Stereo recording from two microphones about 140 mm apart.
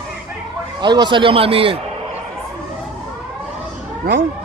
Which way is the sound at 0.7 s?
30° right (ahead or behind).